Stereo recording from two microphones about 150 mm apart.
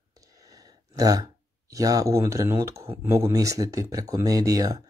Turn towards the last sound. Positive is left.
turn(degrees=-20)  # may be behind; listen again after turning